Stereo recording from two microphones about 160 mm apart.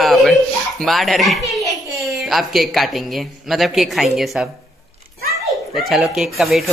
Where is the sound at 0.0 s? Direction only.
Centre (ahead or behind).